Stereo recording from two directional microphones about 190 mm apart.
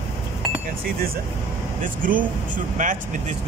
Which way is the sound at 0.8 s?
50° right (ahead or behind).